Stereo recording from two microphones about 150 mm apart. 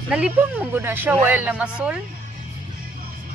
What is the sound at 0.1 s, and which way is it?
Speech, 5° right (ahead or behind).